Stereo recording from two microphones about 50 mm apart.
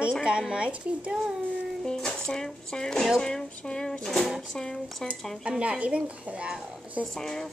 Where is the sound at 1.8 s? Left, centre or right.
Centre.